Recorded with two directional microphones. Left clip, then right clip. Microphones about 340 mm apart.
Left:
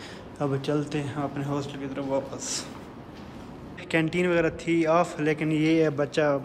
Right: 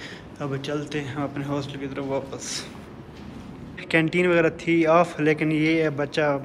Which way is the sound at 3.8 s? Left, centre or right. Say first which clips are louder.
Right 4 dB; centre.